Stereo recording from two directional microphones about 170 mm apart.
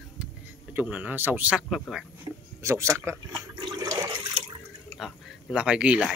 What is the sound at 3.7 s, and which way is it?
Toilet flush, 20° right (ahead or behind).